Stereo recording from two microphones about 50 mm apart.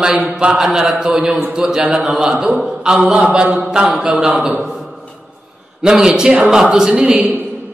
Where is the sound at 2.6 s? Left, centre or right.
Centre.